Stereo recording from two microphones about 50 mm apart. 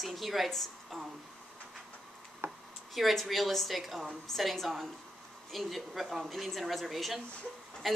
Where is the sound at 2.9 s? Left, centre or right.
Centre.